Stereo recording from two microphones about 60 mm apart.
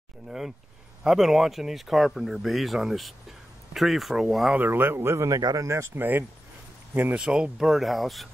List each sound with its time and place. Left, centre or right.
1.0 s speech: centre
4.6 s speech: right
5.3 s speech: right
5.9 s speech: right
7.2 s speech: centre